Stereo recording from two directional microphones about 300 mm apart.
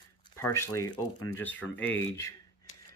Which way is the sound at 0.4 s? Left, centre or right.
Centre.